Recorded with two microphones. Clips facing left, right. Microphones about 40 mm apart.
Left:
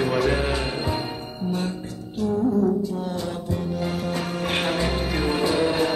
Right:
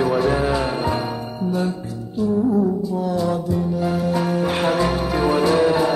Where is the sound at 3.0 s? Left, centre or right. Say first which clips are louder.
Right 7 dB; left.